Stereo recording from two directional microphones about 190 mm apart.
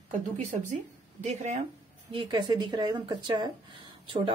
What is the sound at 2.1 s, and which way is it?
A woman's voice, 20° right (ahead or behind).